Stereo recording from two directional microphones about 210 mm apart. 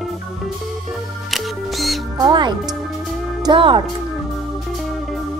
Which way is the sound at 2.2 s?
20° right (ahead or behind).